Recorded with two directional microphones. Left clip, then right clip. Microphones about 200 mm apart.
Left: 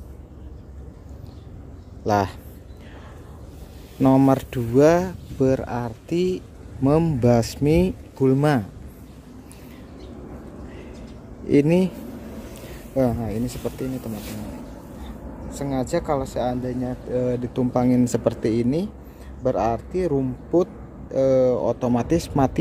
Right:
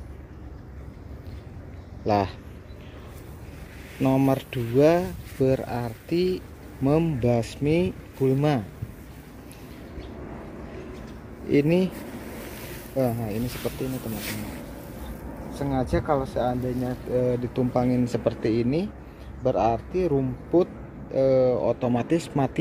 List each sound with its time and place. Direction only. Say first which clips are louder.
2.0 s speech: left 2 dB; 15° left (ahead or behind)
4.0 s speech: left 5 dB; 20° left (ahead or behind)
11.4 s speech: left 3 dB; 20° left (ahead or behind)
12.9 s speech: left 3 dB; 15° left (ahead or behind)
15.5 s speech: left 2 dB; centre (ahead or behind)